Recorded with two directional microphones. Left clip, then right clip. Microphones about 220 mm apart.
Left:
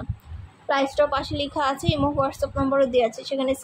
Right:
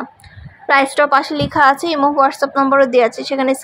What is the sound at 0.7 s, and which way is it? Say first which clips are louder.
A woman's voice: right 9 dB; 30° right (ahead or behind).